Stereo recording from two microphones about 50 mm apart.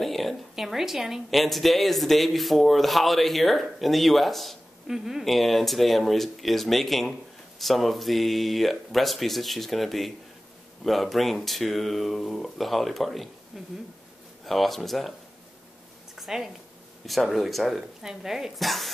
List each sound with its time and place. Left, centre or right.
0.0 s speech: centre
4.8 s speech: centre
16.2 s speech: centre
18.0 s speech: centre